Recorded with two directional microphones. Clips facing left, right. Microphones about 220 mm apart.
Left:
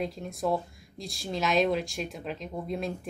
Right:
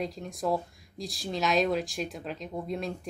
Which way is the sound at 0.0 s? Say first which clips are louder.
Left 1 dB; centre (ahead or behind).